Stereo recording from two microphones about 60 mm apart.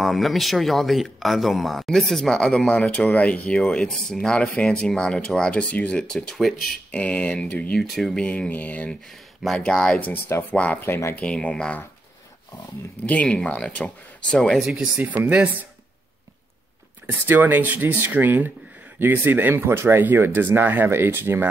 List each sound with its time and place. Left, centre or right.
0.0 s speech: centre
6.1 s speech: centre
6.9 s speech: left
7.7 s speech: centre
8.3 s speech: left
9.4 s speech: centre
9.9 s speech: left
13.0 s speech: left
14.6 s speech: centre
15.2 s speech: right
17.0 s speech: right